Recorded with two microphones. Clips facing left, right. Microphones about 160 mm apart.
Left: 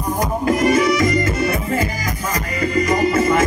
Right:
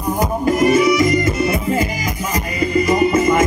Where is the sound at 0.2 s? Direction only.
10° right (ahead or behind).